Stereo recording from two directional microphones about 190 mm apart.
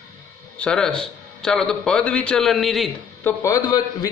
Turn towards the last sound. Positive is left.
turn(degrees=20)  # may be behind; listen again after turning